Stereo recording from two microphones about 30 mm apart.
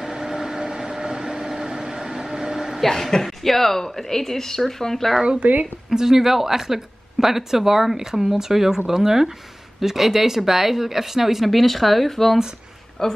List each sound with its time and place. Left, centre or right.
0.0 s vehicle: right
3.2 s speech: centre
5.4 s speech: right
5.9 s speech: centre
13.0 s speech: centre